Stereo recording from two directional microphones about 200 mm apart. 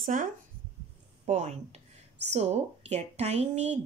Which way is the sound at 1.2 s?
35° right (ahead or behind).